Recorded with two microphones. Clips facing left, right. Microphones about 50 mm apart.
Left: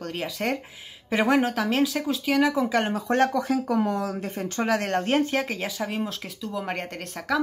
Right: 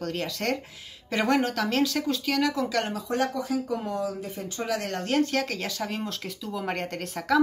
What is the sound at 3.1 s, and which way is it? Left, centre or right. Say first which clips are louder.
Speech: left 5 dB; left.